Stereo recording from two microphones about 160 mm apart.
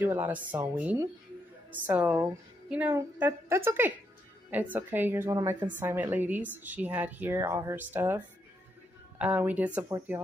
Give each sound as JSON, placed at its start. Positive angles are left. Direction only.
{"t": 0.0, "sound": "a woman's voice", "side_deg": -10}
{"t": 9.2, "sound": "a woman's voice", "side_deg": -10}